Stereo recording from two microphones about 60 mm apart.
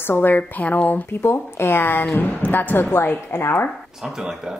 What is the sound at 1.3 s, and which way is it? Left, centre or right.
A woman's voice, left.